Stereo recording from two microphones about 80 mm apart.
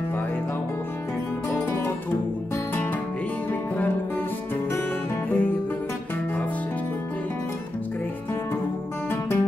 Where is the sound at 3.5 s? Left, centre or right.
Left.